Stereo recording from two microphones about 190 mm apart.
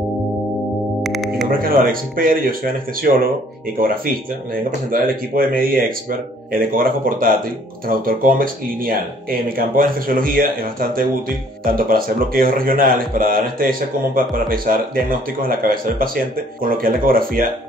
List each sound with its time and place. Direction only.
1.0 s music: centre (ahead or behind)
1.6 s speech: 50° right (ahead or behind)